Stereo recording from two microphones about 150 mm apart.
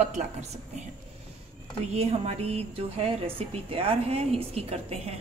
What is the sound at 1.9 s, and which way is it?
Speech, 45° right (ahead or behind).